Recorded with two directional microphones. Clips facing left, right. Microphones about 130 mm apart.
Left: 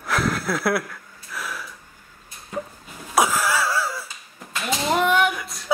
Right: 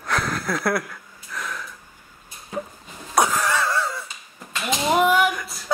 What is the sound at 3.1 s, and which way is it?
Wheeze, 5° left (ahead or behind).